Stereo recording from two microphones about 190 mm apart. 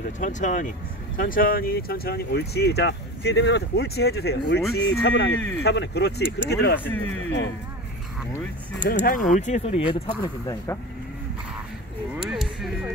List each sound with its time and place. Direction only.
0.2 s speech: 40° left (ahead or behind); by 4.6 s 60° left (ahead or behind)
5.0 s speech: 80° left
5.6 s speech: 60° left (ahead or behind)
6.8 s speech: 10° left (ahead or behind)
8.8 s speech: 45° left (ahead or behind); by 10.8 s 20° left (ahead or behind)
12.3 s a sound: centre (ahead or behind)